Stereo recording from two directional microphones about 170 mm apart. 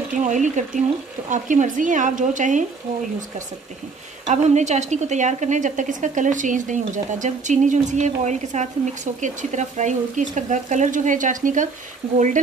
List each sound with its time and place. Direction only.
0.2 s a woman's voice: 45° right (ahead or behind)
4.3 s a woman's voice: 40° right (ahead or behind)